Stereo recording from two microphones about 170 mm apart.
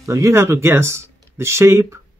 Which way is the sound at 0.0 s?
15° right (ahead or behind).